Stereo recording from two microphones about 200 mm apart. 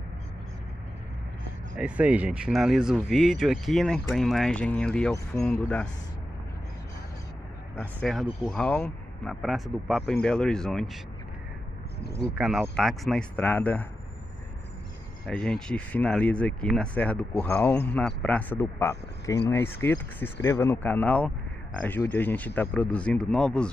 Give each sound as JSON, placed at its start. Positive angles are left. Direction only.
{"t": 1.8, "sound": "speech", "side_deg": -5}
{"t": 7.8, "sound": "speech", "side_deg": 0}
{"t": 12.0, "sound": "speech", "side_deg": 55}
{"t": 12.4, "sound": "speech", "side_deg": 0}
{"t": 15.2, "sound": "speech", "side_deg": 5}